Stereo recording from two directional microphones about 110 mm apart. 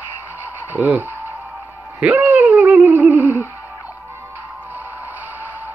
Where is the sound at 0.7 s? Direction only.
15° right (ahead or behind).